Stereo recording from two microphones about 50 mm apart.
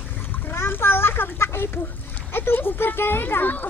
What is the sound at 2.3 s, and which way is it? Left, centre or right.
Speech, left.